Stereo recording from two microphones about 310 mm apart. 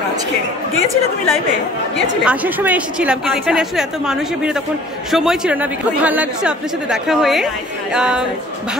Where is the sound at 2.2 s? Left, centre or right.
Centre.